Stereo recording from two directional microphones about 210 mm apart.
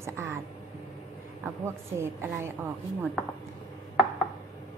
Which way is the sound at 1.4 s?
10° right (ahead or behind).